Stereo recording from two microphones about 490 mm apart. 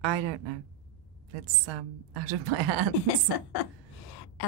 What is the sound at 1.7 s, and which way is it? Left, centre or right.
Speech, right.